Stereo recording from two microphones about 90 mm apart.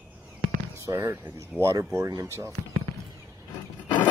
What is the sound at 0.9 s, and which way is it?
Speech, 25° right (ahead or behind).